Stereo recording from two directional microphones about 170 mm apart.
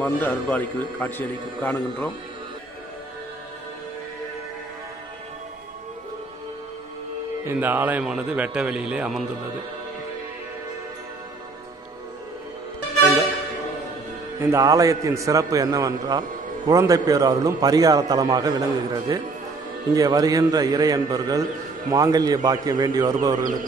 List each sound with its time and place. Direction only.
0.0 s a man's voice: 10° left (ahead or behind)
7.4 s a man's voice: 10° right (ahead or behind)
14.4 s a man's voice: 20° right (ahead or behind)